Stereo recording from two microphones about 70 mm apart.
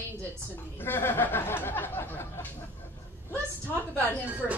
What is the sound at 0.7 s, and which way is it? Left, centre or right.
Speech, left.